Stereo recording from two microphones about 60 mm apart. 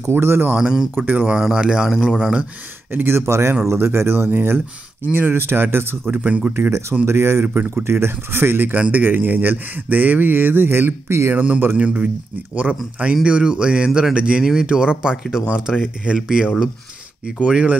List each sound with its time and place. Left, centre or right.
0.0 s speech: right
0.6 s speech: centre
0.9 s speech: right
1.2 s speech: centre
2.9 s speech: right
7.1 s speech: right
8.7 s speech: right
11.3 s speech: right
16.2 s speech: centre
17.5 s speech: centre